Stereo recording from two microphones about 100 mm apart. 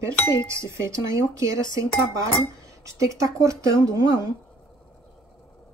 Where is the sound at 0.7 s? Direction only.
30° right (ahead or behind).